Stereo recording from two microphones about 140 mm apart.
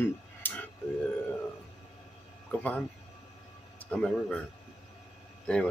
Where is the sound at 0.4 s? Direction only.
15° left (ahead or behind).